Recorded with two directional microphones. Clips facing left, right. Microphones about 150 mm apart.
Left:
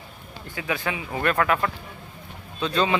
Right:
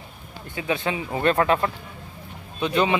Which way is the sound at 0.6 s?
25° right (ahead or behind).